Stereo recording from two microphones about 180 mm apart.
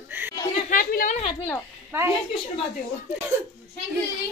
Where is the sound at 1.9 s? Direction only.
15° right (ahead or behind).